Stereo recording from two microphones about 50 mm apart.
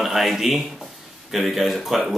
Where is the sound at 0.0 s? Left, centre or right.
Centre.